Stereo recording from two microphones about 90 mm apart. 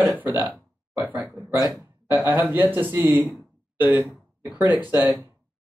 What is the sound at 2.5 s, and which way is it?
Speech, 20° right (ahead or behind).